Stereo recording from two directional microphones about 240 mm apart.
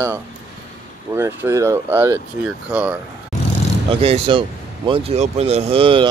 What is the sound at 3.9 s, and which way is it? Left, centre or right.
Speech, right.